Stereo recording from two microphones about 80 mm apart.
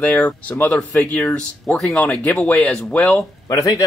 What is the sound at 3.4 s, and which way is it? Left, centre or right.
Speech, left.